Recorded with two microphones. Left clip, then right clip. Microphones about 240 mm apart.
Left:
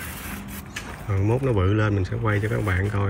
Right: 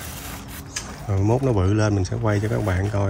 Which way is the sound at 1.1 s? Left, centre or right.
Centre.